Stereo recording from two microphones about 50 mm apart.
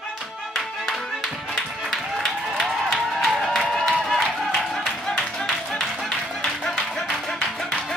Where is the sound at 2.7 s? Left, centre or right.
Centre.